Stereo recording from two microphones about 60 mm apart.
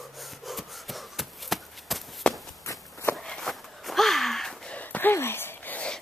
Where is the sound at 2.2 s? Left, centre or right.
Centre.